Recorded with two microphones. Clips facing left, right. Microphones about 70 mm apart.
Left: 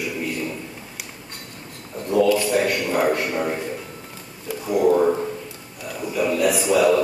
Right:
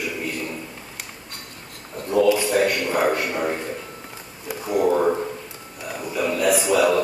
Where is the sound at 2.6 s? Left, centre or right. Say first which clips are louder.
Right 1 dB; centre.